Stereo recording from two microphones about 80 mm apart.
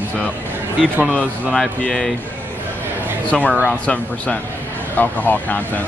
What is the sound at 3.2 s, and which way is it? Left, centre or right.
Speech, centre.